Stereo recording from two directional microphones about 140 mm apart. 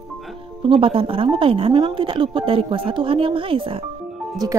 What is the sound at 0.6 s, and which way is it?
Speech, 40° right (ahead or behind).